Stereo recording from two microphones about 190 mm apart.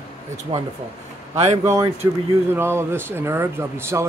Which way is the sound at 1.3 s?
35° right (ahead or behind).